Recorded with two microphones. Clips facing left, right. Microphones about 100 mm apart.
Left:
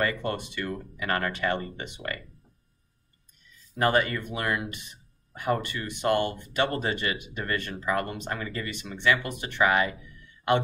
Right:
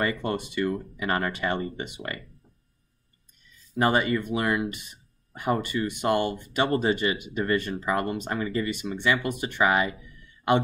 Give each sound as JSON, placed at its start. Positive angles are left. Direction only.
{"t": 0.0, "sound": "speech", "side_deg": -15}
{"t": 3.7, "sound": "speech", "side_deg": -15}